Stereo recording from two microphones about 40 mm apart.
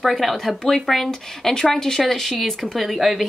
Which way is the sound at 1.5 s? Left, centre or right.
Centre.